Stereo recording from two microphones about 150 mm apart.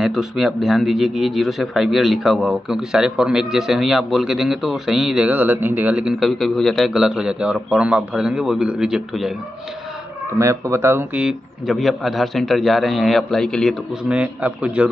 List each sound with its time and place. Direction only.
0.0 s a man's voice: centre (ahead or behind)
10.4 s speech: 20° right (ahead or behind)
11.2 s a man's voice: centre (ahead or behind)
14.0 s a man's voice: 10° right (ahead or behind)